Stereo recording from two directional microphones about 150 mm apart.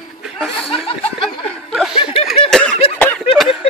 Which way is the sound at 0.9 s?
40° left (ahead or behind).